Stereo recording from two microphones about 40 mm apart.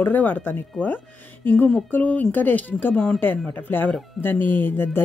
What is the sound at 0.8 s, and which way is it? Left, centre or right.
Speech, left.